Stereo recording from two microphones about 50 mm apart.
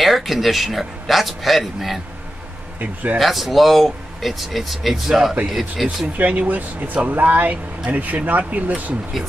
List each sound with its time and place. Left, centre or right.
0.0 s speech: centre
2.8 s speech: right
3.2 s speech: centre
6.1 s speech: right